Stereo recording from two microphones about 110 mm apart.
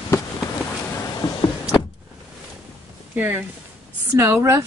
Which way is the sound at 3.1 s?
15° right (ahead or behind).